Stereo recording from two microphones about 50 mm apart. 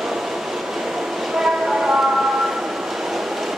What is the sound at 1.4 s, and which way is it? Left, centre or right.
Train, centre.